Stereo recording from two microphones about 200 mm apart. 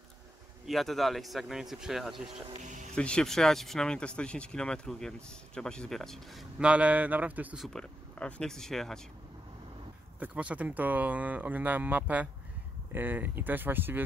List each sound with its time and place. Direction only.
0.7 s speech: centre (ahead or behind)
2.6 s speech: 40° right (ahead or behind)
3.0 s speech: 5° left (ahead or behind)
10.1 s speech: 5° right (ahead or behind)